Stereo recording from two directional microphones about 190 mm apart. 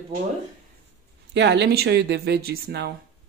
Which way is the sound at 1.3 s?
65° right (ahead or behind).